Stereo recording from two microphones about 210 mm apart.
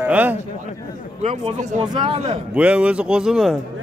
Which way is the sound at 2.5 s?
5° right (ahead or behind).